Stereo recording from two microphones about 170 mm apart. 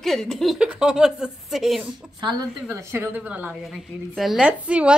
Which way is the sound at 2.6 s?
15° right (ahead or behind).